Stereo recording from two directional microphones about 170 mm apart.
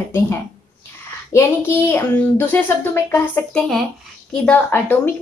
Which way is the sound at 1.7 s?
10° left (ahead or behind).